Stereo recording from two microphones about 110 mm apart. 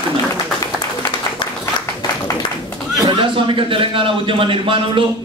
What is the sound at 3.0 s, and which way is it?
A man's voice, 50° right (ahead or behind).